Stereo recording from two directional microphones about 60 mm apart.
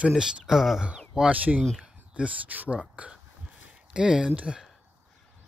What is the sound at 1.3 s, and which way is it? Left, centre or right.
Speech, right.